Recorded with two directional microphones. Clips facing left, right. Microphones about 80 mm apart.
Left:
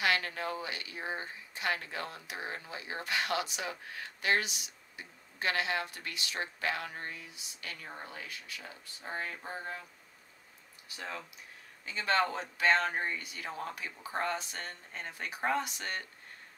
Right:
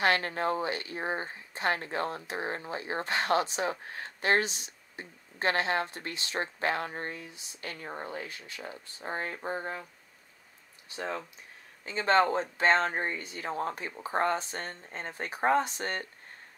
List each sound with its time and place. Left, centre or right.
0.0 s speech: right
10.9 s speech: right